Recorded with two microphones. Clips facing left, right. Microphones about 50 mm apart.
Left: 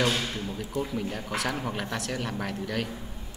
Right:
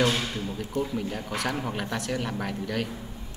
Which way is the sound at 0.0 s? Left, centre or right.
Centre.